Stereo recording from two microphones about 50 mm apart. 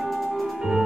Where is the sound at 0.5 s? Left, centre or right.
Centre.